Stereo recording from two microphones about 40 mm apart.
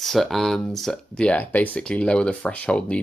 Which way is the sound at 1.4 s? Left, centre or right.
Left.